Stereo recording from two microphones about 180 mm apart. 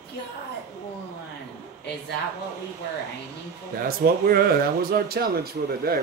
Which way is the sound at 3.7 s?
55° right (ahead or behind).